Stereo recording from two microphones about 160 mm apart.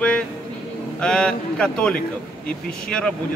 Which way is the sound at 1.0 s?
5° left (ahead or behind).